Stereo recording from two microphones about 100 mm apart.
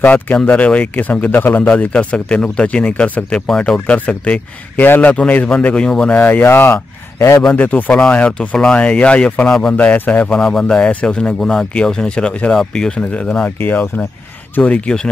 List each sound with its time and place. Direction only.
0.0 s speech: 15° left (ahead or behind)
6.1 s speech: 20° left (ahead or behind)
7.5 s speech: 15° left (ahead or behind)